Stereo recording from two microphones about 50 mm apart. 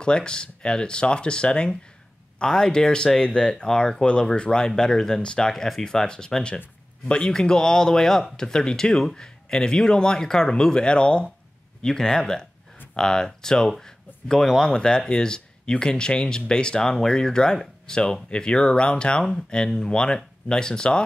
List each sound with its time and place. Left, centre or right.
0.0 s speech: centre